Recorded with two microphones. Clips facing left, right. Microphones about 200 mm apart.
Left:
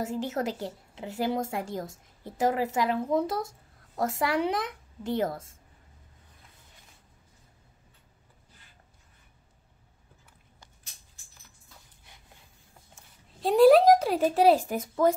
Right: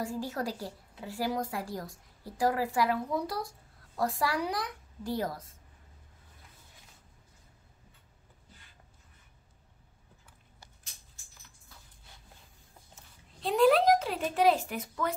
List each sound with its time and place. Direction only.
0.0 s a woman's voice: 20° left (ahead or behind)
13.4 s speech: 40° left (ahead or behind)